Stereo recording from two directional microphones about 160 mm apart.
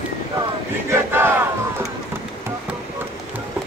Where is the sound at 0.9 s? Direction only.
15° right (ahead or behind).